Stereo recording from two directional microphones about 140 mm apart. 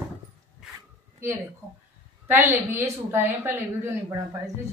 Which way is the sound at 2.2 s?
15° right (ahead or behind).